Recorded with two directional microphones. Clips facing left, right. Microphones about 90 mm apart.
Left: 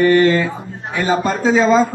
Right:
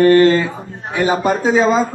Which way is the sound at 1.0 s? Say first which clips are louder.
Right 1 dB; 15° right (ahead or behind).